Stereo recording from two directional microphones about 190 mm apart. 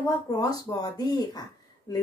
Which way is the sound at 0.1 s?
20° left (ahead or behind).